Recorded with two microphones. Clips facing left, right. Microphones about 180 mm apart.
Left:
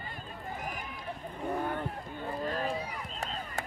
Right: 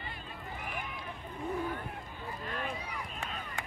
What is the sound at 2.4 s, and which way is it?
Chop, 35° left (ahead or behind).